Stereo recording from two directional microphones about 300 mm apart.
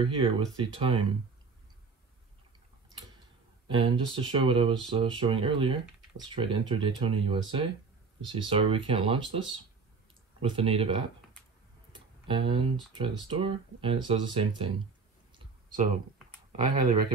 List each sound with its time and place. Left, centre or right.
0.0 s speech: centre
3.6 s speech: centre
11.9 s a sound: centre
13.0 s speech: centre
15.3 s clicking: right
16.5 s speech: right